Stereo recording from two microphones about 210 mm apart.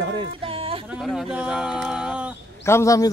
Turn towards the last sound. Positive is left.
turn(degrees=15)  # may be behind; listen again after turning